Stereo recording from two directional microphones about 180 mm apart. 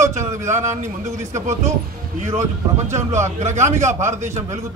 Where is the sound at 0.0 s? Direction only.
15° right (ahead or behind).